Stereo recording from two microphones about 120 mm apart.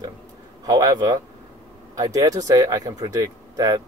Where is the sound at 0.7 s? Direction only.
30° right (ahead or behind).